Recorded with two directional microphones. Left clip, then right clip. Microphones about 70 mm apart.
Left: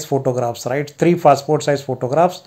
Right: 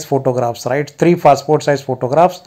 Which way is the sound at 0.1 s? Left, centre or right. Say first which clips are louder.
Right 3 dB; right.